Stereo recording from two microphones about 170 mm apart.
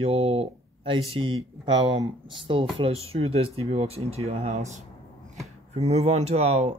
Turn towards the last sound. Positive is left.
turn(degrees=-35)  # may be behind; listen again after turning